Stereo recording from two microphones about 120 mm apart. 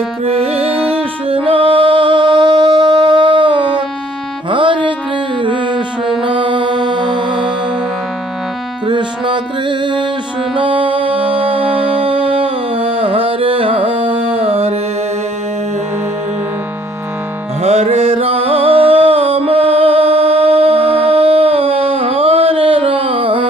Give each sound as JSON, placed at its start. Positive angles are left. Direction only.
{"t": 0.2, "sound": "music", "side_deg": -55}
{"t": 8.8, "sound": "music", "side_deg": -40}
{"t": 11.6, "sound": "music", "side_deg": -15}
{"t": 12.0, "sound": "music", "side_deg": -45}
{"t": 17.6, "sound": "music", "side_deg": -60}